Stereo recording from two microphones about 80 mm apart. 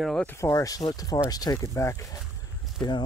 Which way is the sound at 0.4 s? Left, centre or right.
Left.